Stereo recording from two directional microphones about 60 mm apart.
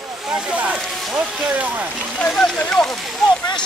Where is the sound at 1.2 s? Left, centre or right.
Right.